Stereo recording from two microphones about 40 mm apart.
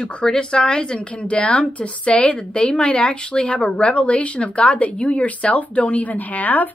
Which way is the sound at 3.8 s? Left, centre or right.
Left.